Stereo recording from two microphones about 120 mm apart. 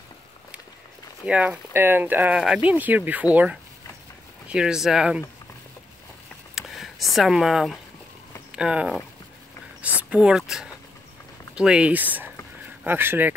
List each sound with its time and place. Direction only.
1.2 s speech: 10° right (ahead or behind)
6.5 s speech: centre (ahead or behind)
9.8 s a sound: 10° right (ahead or behind)
11.5 s speech: 10° right (ahead or behind)